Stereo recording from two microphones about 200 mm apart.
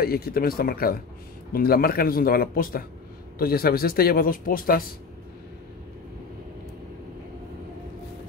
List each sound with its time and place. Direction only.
0.0 s speech: 50° left (ahead or behind)